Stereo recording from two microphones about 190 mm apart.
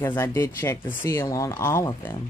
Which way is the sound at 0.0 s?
10° left (ahead or behind).